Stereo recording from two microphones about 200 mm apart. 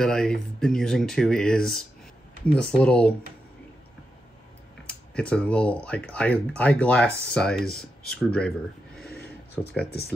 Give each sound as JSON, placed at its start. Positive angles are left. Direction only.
{"t": 0.0, "sound": "speech", "side_deg": 5}
{"t": 4.8, "sound": "speech", "side_deg": 5}
{"t": 9.8, "sound": "speech", "side_deg": 50}